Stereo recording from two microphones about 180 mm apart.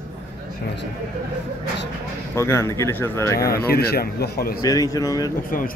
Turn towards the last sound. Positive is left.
turn(degrees=20)  # may be behind; listen again after turning